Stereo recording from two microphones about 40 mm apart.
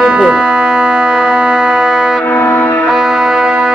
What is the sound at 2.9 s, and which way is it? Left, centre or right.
Music, centre.